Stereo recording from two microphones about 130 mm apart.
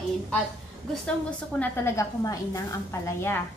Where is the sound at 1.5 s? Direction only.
20° left (ahead or behind).